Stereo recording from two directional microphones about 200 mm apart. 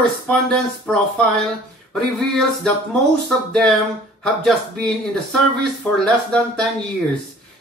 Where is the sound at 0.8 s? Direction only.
Centre (ahead or behind).